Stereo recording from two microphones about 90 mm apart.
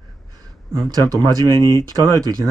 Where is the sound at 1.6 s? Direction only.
35° left (ahead or behind).